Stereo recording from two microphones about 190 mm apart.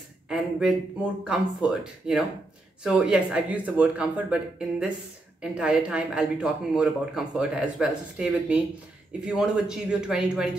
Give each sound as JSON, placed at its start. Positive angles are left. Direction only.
{"t": 0.3, "sound": "speech", "side_deg": -5}